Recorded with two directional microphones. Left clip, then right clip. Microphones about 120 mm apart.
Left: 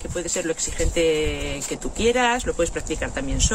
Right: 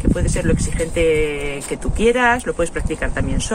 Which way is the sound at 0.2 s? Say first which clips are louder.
Right 4 dB; centre (ahead or behind).